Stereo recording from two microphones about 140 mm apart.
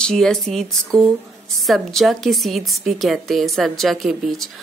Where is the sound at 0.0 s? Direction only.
5° left (ahead or behind).